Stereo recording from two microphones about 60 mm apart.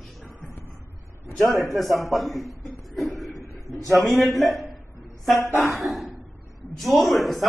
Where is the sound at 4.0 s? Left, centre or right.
Centre.